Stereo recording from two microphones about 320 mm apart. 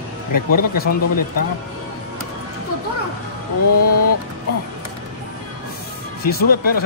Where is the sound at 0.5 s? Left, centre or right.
Left.